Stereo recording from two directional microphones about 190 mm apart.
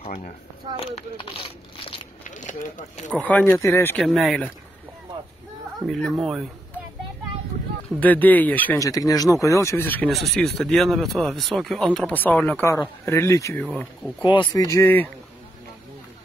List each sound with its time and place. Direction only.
0.0 s a sound: 35° left (ahead or behind)
0.7 s speech: 30° left (ahead or behind)
2.2 s a sound: 40° left (ahead or behind)
3.1 s speech: 10° left (ahead or behind)
4.0 s speech: centre (ahead or behind)
5.9 s speech: centre (ahead or behind)
8.0 s speech: 10° left (ahead or behind)